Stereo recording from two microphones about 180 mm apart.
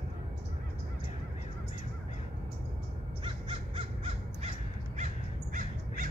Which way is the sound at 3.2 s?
30° right (ahead or behind).